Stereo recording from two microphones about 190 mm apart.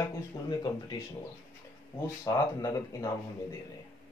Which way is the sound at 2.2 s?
15° left (ahead or behind).